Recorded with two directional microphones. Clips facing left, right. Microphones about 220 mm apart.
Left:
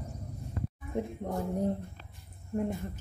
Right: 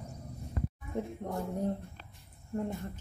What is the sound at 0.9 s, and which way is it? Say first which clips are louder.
Speech: left 3 dB; 15° left (ahead or behind).